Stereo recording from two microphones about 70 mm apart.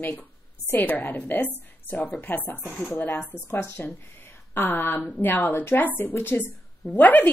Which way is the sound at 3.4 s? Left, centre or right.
Left.